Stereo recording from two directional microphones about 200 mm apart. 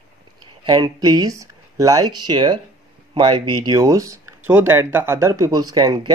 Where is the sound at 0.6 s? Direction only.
20° right (ahead or behind).